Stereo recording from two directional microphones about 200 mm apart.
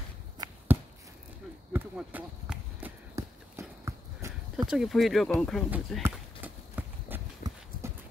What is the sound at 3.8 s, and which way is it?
Clip-clop, 15° right (ahead or behind).